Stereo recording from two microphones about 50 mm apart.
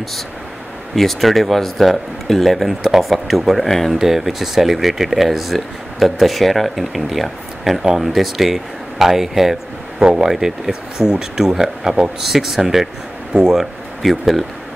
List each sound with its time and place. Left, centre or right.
0.9 s speech: centre
13.6 s speech: centre